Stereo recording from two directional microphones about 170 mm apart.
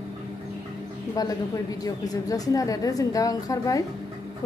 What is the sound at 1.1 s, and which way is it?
A woman's voice, 20° left (ahead or behind).